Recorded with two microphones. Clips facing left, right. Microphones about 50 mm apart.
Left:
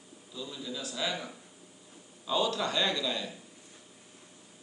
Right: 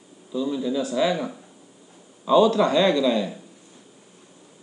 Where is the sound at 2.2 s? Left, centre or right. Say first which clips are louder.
Right 13 dB; right.